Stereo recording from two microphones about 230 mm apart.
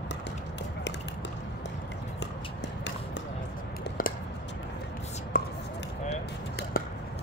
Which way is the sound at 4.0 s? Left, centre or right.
Left.